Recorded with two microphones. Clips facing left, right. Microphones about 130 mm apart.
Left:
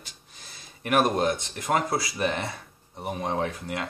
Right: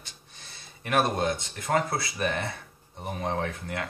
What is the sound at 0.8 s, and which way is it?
Speech, 20° left (ahead or behind).